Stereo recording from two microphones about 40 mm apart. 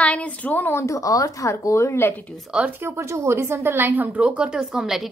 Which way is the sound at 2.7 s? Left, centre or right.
Right.